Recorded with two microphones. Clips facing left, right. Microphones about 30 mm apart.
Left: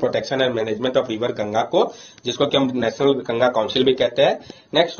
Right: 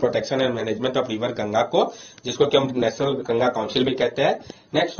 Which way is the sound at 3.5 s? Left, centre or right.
Left.